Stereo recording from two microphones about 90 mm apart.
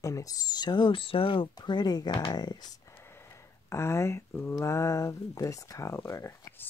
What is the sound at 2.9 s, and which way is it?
Speech, 25° left (ahead or behind).